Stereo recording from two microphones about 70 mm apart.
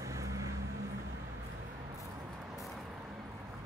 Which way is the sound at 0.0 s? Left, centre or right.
Right.